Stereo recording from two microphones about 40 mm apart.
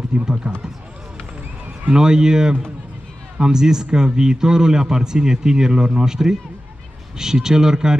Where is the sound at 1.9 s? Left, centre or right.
Centre.